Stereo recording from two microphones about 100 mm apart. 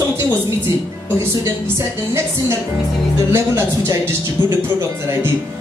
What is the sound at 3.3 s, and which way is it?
Speech, 25° right (ahead or behind).